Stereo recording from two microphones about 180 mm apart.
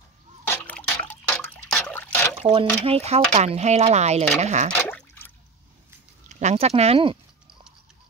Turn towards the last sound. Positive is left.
turn(degrees=-30)  # may be behind; listen again after turning